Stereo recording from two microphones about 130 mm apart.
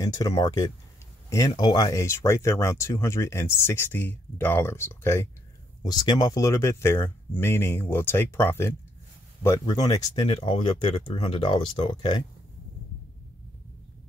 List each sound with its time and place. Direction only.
0.0 s speech: 25° left (ahead or behind)
5.9 s speech: 30° left (ahead or behind)